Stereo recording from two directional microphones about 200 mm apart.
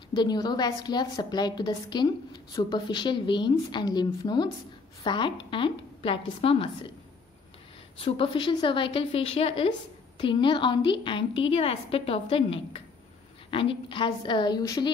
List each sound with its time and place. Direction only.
0.1 s a woman's voice: 20° left (ahead or behind)
8.0 s a woman's voice: 25° left (ahead or behind)